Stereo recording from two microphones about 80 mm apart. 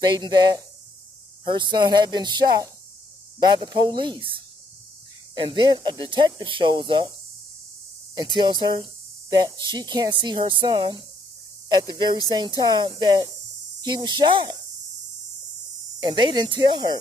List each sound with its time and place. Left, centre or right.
0.1 s speech: right
8.2 s speech: right
11.7 s speech: right
16.0 s speech: right